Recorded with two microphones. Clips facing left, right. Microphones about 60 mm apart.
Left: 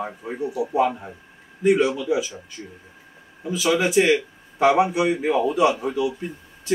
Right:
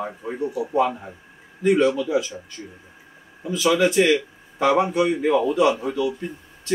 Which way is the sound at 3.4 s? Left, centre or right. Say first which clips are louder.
Right 2 dB; centre.